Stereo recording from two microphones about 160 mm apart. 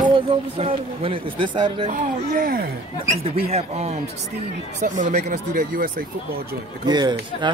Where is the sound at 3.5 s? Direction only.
40° right (ahead or behind).